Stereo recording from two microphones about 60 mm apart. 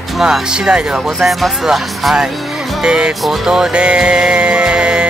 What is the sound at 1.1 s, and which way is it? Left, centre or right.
Speech, centre.